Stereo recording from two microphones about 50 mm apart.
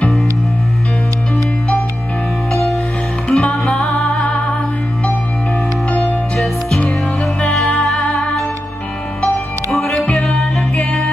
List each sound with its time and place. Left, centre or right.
2.5 s music: centre
3.3 s music: left
5.9 s music: left
8.1 s music: centre
9.7 s music: centre